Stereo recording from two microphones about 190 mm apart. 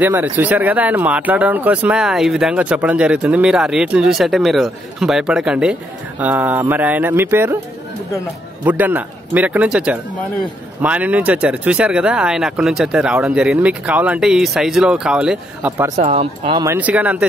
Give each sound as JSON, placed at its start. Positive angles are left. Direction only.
{"t": 0.0, "sound": "speech", "side_deg": -10}
{"t": 8.6, "sound": "speech", "side_deg": -10}
{"t": 16.0, "sound": "speech", "side_deg": -35}
{"t": 16.6, "sound": "speech", "side_deg": -10}